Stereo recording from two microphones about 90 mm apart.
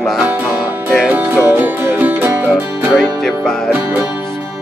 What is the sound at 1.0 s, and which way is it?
Music, 15° right (ahead or behind).